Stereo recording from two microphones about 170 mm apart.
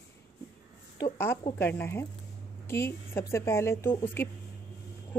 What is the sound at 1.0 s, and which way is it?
Speech, 10° left (ahead or behind).